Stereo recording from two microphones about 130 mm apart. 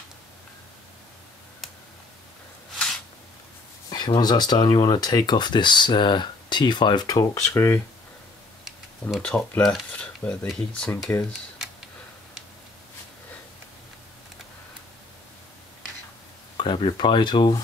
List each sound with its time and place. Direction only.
3.9 s speech: 35° left (ahead or behind)
9.2 s speech: 10° left (ahead or behind)
11.1 s speech: 15° left (ahead or behind)
16.5 s speech: 40° left (ahead or behind)